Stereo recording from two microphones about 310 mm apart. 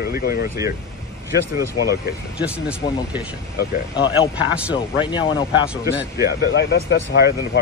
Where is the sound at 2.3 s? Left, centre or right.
Centre.